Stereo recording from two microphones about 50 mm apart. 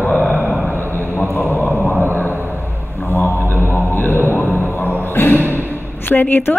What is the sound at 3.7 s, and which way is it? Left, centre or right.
Music, left.